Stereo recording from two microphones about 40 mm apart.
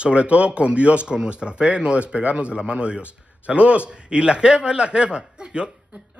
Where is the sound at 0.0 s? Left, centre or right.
Right.